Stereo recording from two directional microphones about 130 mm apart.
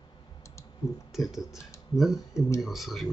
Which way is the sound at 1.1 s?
Centre (ahead or behind).